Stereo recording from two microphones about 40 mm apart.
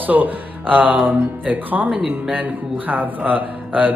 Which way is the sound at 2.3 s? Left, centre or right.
Right.